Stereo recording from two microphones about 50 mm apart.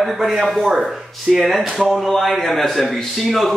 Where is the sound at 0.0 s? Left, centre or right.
Centre.